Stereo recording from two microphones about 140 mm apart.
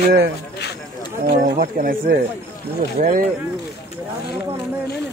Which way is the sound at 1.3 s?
75° right (ahead or behind).